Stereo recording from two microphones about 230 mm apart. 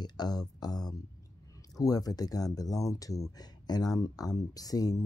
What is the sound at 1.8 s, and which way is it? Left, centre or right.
Speech, centre.